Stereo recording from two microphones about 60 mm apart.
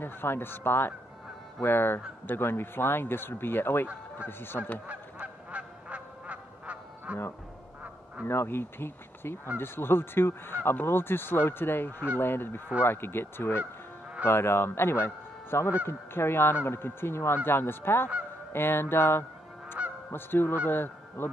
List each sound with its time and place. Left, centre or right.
0.0 s speech: left
4.8 s honk: right
8.3 s speech: left
15.8 s goose: left
17.5 s speech: left
20.6 s goose: left